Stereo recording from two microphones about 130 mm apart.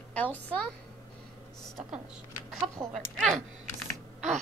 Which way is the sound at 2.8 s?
15° right (ahead or behind).